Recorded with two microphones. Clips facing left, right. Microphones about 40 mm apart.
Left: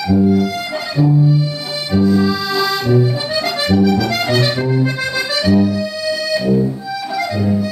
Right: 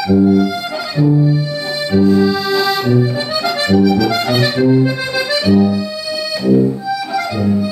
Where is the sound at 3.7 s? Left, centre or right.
Centre.